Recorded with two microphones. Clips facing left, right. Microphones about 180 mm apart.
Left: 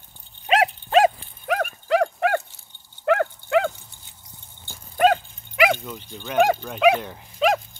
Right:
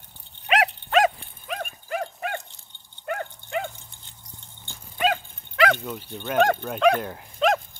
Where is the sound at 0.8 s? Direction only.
30° left (ahead or behind).